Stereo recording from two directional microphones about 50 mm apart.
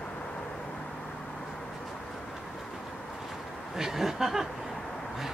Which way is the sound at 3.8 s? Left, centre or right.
Centre.